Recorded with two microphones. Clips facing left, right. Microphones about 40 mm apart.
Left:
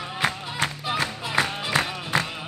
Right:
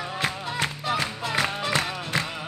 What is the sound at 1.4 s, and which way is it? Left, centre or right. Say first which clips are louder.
Music: left 2 dB; left.